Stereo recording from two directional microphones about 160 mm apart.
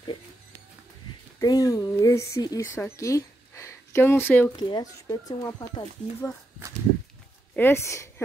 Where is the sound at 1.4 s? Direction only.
25° left (ahead or behind).